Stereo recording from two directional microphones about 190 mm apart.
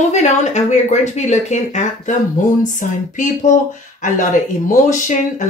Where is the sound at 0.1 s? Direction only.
35° left (ahead or behind).